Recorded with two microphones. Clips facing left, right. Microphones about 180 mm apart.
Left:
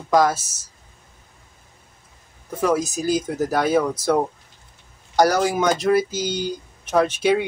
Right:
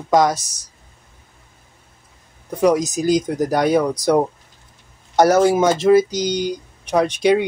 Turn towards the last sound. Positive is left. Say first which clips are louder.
# right 3 dB
turn(degrees=-15)  # may be behind; listen again after turning